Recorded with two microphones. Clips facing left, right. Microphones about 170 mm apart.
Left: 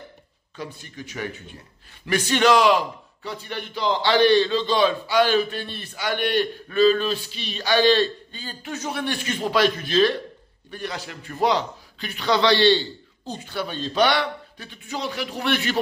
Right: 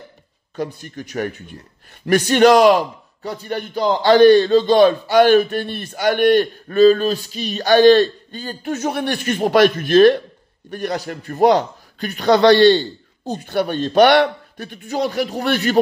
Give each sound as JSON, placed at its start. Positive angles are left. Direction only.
{"t": 0.6, "sound": "speech", "side_deg": -50}